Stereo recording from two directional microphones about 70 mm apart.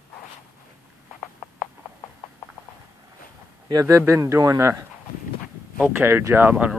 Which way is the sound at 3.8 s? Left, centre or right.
Right.